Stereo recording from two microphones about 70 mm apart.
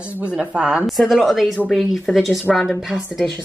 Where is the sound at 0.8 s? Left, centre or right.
Centre.